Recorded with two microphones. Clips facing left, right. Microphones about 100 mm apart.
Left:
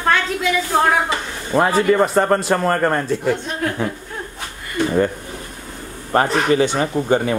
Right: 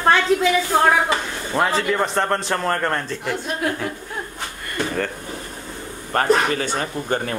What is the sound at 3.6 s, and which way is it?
Speech, 10° right (ahead or behind).